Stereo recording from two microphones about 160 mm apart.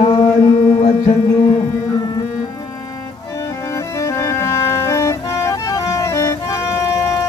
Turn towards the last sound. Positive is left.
turn(degrees=20)  # may be behind; listen again after turning